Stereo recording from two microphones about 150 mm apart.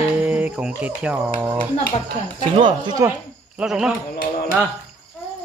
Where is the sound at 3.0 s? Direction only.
20° right (ahead or behind).